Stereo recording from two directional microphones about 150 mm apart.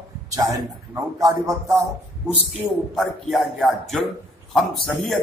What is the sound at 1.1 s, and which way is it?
Speech, 25° right (ahead or behind).